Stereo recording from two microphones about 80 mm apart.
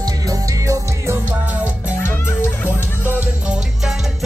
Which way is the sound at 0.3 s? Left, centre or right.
Right.